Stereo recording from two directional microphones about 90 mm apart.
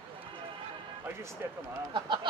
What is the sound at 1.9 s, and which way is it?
Speech, 65° right (ahead or behind).